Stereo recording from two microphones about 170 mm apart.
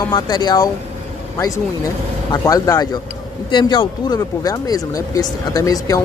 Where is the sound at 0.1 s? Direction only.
25° left (ahead or behind).